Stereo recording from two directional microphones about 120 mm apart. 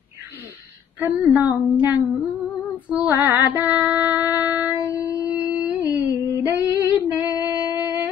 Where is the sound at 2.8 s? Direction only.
15° right (ahead or behind).